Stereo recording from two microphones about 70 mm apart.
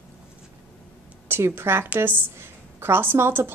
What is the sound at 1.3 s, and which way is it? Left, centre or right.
A woman's voice, right.